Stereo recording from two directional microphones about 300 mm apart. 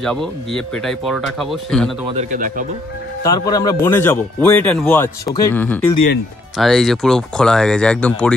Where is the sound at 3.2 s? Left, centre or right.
Centre.